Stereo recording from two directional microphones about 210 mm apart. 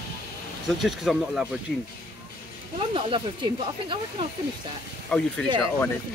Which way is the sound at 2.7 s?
25° right (ahead or behind).